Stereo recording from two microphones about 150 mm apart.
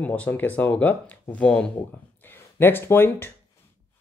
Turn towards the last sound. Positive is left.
turn(degrees=15)  # may be behind; listen again after turning